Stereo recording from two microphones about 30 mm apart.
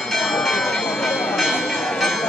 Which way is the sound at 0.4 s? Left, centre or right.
Centre.